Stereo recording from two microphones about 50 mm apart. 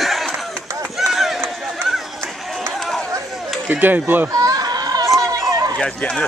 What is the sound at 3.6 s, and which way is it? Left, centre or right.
Speech, right.